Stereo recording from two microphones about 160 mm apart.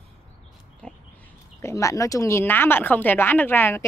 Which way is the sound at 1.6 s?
20° left (ahead or behind).